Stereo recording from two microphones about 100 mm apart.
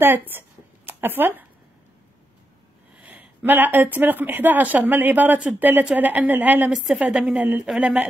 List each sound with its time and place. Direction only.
0.0 s a sound: 20° right (ahead or behind)
3.0 s speech: 15° right (ahead or behind)
6.7 s speech: 5° right (ahead or behind)